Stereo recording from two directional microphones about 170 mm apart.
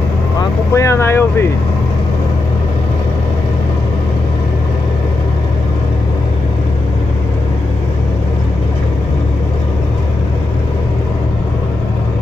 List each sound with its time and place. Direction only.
0.4 s speech: 20° left (ahead or behind)